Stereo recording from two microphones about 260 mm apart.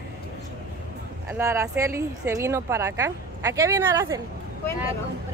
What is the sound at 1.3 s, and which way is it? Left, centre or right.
Speech, centre.